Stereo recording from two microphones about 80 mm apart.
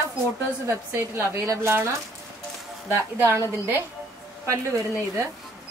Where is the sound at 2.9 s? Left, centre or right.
Right.